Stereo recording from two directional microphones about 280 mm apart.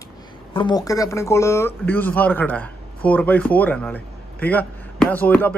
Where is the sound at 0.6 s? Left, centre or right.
Centre.